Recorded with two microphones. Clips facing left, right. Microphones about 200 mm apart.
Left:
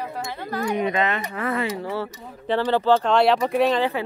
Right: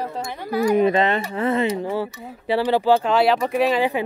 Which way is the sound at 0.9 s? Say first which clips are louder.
Right 4 dB; 30° right (ahead or behind).